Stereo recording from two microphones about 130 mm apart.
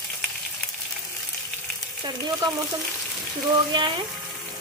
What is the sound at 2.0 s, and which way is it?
Speech, 35° right (ahead or behind).